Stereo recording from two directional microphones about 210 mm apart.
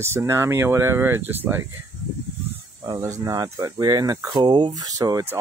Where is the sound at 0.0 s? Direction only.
10° right (ahead or behind).